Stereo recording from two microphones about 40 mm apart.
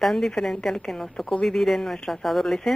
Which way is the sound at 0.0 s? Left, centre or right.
Centre.